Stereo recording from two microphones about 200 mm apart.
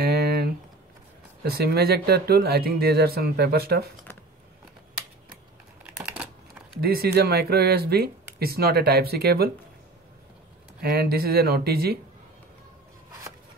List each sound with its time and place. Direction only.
0.0 s a sound: 55° right (ahead or behind)
1.4 s speech: 50° right (ahead or behind)
5.9 s computer keyboard: 5° right (ahead or behind)
6.8 s speech: 50° right (ahead or behind)
10.8 s speech: 50° right (ahead or behind)